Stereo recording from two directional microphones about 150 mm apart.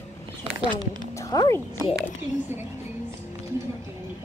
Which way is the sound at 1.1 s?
20° left (ahead or behind).